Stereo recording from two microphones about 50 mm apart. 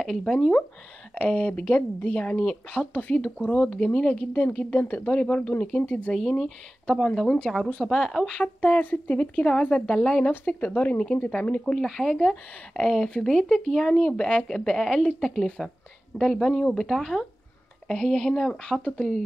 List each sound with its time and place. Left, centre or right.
0.0 s speech: centre
1.1 s speech: left
2.7 s speech: left
6.1 s speech: centre
6.9 s speech: centre
8.6 s speech: left
10.4 s speech: left
11.7 s speech: centre